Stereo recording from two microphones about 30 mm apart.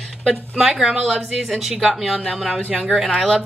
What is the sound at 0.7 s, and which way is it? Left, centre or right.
Speech, centre.